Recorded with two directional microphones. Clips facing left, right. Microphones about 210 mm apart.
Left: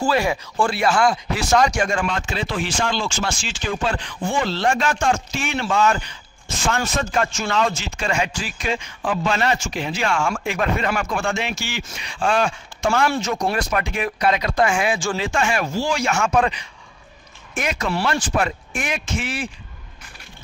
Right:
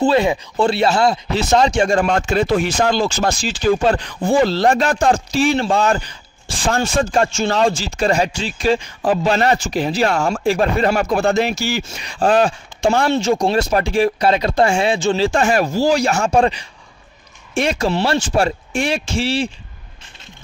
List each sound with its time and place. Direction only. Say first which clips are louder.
0.0 s speech: right 5 dB; 20° right (ahead or behind)